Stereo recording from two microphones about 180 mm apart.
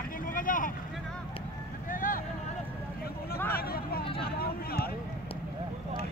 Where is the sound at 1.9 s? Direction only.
50° left (ahead or behind).